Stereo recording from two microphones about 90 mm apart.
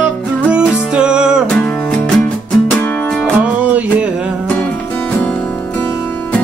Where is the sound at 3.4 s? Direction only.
15° right (ahead or behind).